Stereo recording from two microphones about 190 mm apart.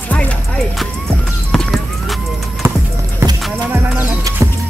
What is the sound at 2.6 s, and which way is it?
Music, 15° right (ahead or behind).